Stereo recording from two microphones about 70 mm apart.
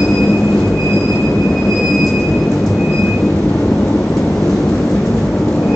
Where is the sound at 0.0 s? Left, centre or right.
Centre.